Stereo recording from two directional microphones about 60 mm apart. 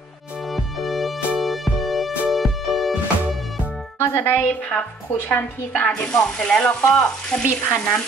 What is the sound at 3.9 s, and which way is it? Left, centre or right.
Speech, left.